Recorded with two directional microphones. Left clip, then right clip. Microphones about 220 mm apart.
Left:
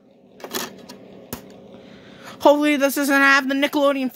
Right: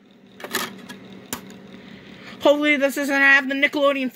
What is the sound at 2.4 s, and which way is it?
Speech, 10° left (ahead or behind).